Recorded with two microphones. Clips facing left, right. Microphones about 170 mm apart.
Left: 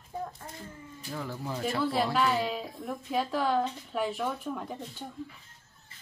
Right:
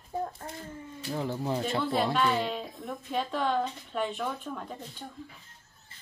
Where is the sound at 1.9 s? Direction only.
5° left (ahead or behind).